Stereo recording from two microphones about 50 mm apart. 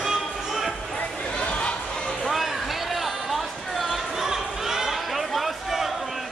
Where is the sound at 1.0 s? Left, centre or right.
Centre.